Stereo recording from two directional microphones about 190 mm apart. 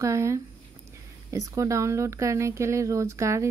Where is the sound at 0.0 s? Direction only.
15° right (ahead or behind).